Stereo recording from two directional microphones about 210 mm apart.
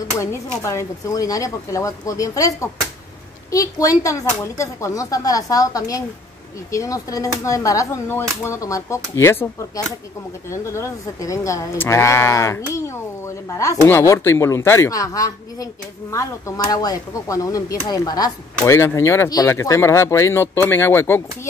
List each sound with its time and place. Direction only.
0.2 s speech: 15° left (ahead or behind)